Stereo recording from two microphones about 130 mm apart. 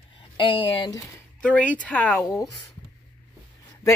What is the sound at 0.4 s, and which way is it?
Speech, 35° left (ahead or behind).